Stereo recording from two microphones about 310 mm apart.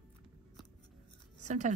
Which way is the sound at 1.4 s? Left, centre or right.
Right.